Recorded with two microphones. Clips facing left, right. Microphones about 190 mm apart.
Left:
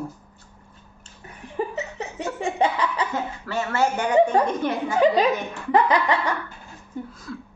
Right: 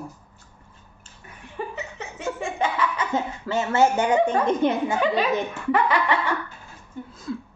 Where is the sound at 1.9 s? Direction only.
35° left (ahead or behind).